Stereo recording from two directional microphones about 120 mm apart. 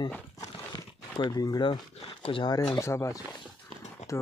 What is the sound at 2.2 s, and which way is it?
Speech, 50° left (ahead or behind).